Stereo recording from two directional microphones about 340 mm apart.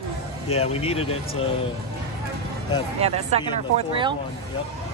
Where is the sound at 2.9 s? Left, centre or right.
Centre.